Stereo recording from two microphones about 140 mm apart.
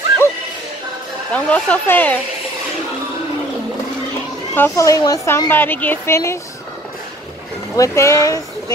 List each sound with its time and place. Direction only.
1.3 s speech: 10° left (ahead or behind)
4.6 s a woman's voice: 20° left (ahead or behind)
7.7 s speech: 20° left (ahead or behind)